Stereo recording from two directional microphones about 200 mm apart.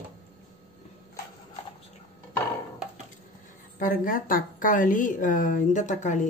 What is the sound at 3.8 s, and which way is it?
A woman's voice, 45° left (ahead or behind).